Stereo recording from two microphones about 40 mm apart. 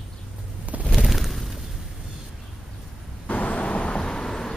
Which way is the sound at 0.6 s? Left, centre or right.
Right.